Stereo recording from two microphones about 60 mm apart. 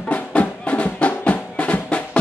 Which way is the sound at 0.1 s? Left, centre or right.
Left.